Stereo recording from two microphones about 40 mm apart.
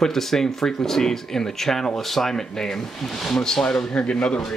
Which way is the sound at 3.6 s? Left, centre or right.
Left.